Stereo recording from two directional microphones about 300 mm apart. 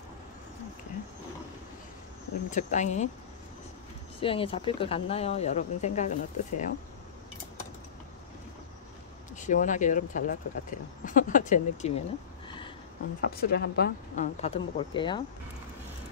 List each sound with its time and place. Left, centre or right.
2.5 s speech: left
4.2 s speech: centre
9.4 s speech: left
12.4 s a sound: centre
13.2 s speech: left; by 15.2 s centre